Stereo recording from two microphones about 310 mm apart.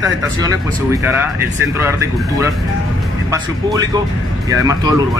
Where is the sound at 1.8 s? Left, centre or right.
Centre.